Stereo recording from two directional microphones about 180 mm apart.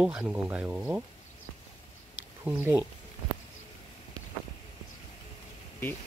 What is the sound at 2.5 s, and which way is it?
Speech, 10° right (ahead or behind).